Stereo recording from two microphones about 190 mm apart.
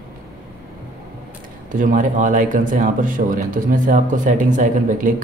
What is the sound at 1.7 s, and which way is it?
A man's voice, 45° right (ahead or behind).